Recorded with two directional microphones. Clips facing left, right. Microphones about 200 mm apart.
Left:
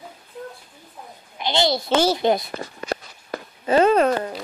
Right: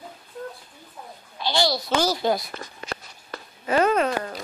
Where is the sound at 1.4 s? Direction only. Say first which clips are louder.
Left 2 dB; 20° left (ahead or behind).